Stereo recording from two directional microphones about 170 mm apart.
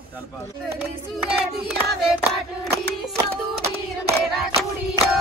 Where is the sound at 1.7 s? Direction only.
Centre (ahead or behind).